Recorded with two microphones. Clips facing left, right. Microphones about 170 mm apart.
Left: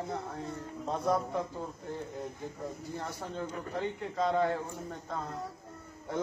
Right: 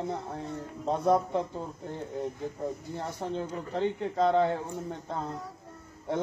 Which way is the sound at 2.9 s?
20° right (ahead or behind).